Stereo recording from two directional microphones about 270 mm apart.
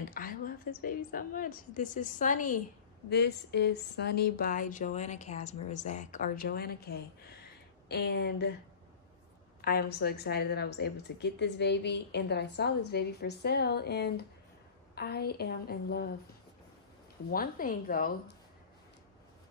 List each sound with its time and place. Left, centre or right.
0.1 s a woman's voice: left
9.6 s a woman's voice: left
17.3 s a woman's voice: left